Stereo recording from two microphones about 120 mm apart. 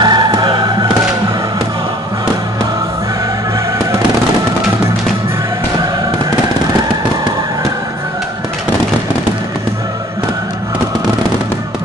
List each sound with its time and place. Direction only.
0.0 s music: 35° right (ahead or behind)